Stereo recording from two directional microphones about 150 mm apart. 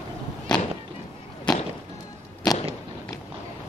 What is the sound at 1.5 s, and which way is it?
Music, 30° left (ahead or behind).